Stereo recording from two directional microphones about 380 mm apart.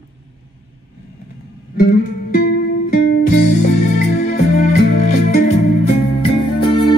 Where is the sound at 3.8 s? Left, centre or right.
Centre.